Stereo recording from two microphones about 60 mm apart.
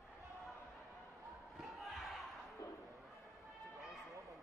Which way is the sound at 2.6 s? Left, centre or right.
Left.